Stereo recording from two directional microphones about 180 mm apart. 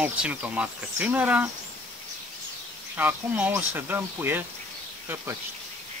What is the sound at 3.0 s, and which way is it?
Speech, 10° right (ahead or behind).